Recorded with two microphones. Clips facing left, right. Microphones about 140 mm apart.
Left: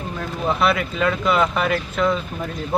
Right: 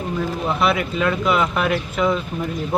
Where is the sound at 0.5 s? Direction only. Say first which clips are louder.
Left 2 dB; centre (ahead or behind).